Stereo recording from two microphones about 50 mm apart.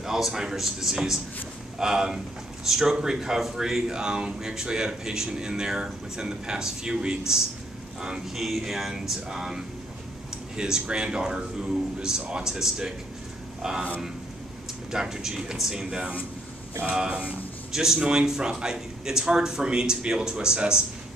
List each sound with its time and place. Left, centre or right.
0.0 s speech: centre
8.4 s speech: centre
14.9 s speech: centre